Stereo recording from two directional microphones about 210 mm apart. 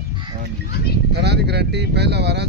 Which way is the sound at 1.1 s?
50° right (ahead or behind).